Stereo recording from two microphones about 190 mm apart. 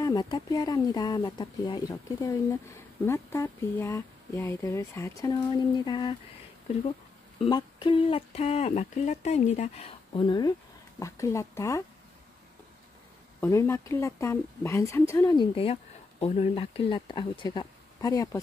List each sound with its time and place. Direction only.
0.0 s a woman's voice: 20° left (ahead or behind)
7.4 s a woman's voice: 25° left (ahead or behind)
13.4 s a woman's voice: 15° left (ahead or behind)